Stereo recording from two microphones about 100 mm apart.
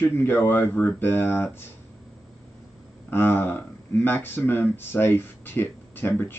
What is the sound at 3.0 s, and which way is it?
Speech, 20° left (ahead or behind).